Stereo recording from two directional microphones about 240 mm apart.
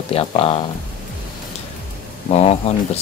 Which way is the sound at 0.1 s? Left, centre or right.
Left.